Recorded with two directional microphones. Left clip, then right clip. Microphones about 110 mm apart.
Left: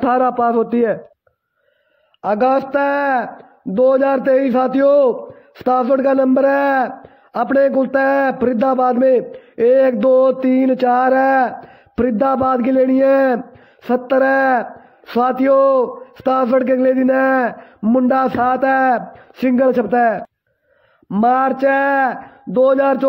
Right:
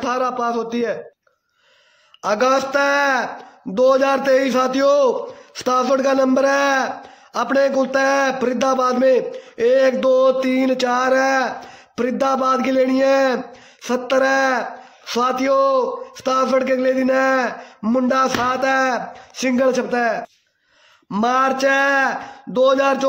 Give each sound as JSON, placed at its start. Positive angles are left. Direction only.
{"t": 0.0, "sound": "a man's voice", "side_deg": 50}
{"t": 2.2, "sound": "a man's voice", "side_deg": 25}
{"t": 21.2, "sound": "a man's voice", "side_deg": 35}